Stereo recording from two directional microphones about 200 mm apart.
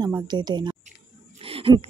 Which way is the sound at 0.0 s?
20° right (ahead or behind).